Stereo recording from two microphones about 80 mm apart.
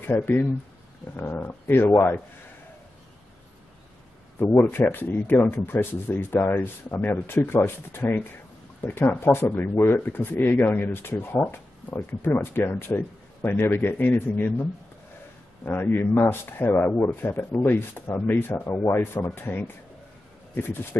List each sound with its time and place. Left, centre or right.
0.0 s speech: left
4.4 s speech: left